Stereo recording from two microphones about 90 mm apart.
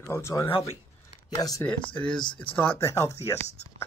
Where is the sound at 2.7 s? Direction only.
30° left (ahead or behind).